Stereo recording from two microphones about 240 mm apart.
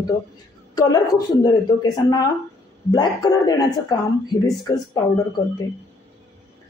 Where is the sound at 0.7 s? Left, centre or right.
Centre.